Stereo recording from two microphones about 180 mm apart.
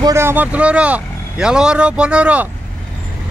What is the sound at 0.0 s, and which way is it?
Speech, 15° right (ahead or behind).